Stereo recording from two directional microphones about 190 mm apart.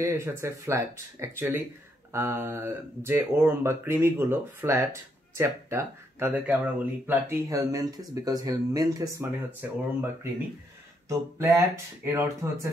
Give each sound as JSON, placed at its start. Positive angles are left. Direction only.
{"t": 0.0, "sound": "speech", "side_deg": -15}
{"t": 11.1, "sound": "speech", "side_deg": -15}